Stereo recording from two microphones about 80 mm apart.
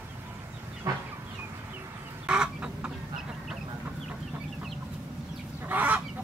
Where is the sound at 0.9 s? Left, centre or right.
Right.